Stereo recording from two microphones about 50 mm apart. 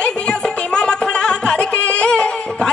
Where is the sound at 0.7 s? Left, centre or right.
Centre.